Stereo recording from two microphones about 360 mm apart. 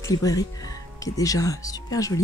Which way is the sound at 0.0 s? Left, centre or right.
Centre.